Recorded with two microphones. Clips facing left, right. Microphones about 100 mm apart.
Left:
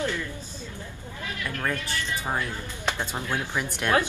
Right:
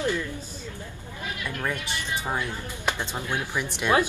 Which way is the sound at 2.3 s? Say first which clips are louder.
Even; 15° right (ahead or behind).